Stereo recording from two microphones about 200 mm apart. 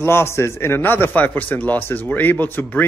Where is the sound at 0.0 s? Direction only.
10° left (ahead or behind).